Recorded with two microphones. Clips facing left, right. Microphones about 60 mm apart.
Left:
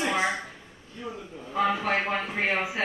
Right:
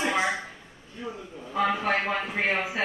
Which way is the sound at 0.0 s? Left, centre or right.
Centre.